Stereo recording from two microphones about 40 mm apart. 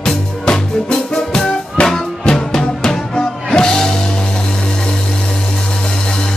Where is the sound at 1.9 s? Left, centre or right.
Centre.